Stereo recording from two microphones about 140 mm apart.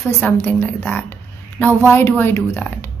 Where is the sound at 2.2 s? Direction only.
15° left (ahead or behind).